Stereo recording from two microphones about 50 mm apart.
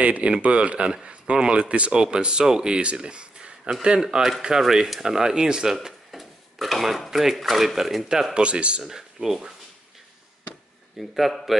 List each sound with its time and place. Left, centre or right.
0.0 s speech: right; by 8.1 s centre
8.4 s speech: right
8.8 s speech: centre
11.0 s speech: centre